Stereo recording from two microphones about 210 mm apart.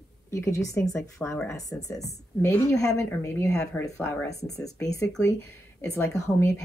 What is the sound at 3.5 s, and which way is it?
Speech, 5° left (ahead or behind).